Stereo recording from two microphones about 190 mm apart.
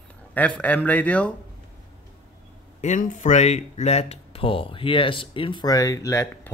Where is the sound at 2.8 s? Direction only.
40° left (ahead or behind).